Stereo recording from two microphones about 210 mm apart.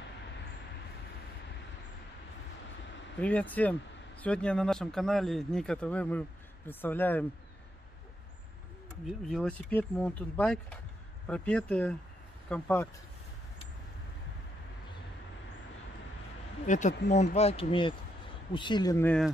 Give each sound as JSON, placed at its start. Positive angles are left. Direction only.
{"t": 3.2, "sound": "speech", "side_deg": 5}
{"t": 9.3, "sound": "speech", "side_deg": 5}
{"t": 16.6, "sound": "speech", "side_deg": 35}